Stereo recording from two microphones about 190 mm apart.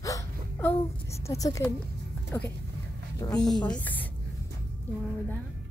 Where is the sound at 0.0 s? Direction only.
15° left (ahead or behind).